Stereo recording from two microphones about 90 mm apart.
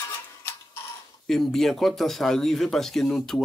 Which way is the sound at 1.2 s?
5° left (ahead or behind).